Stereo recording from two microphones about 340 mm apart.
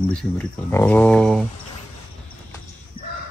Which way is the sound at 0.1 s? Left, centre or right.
Centre.